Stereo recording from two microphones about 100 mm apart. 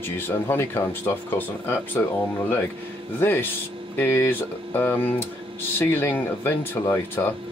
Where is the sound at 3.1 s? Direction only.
20° left (ahead or behind).